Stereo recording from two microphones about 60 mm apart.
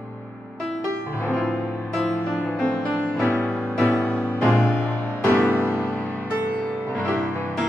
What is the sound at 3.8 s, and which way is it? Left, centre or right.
Music, left.